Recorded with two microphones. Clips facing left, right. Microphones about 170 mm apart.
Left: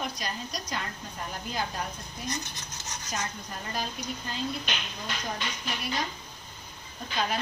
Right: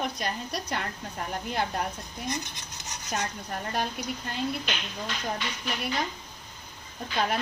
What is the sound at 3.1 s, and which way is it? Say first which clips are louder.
Speech: right 4 dB; 65° right (ahead or behind).